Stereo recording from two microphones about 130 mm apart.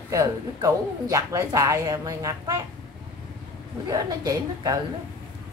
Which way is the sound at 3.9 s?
30° right (ahead or behind).